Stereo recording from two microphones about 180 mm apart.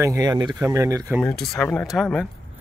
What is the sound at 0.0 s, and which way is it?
Speech, 20° right (ahead or behind).